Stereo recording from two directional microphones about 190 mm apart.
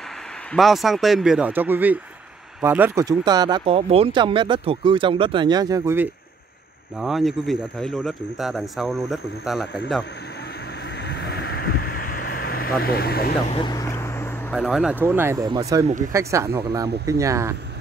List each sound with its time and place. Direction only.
0.5 s speech: centre (ahead or behind); by 6.0 s 15° right (ahead or behind)
7.0 s speech: centre (ahead or behind)
11.1 s vehicle: 60° left (ahead or behind)
12.8 s speech: 55° left (ahead or behind)
13.5 s vehicle: 25° left (ahead or behind)
14.5 s speech: centre (ahead or behind)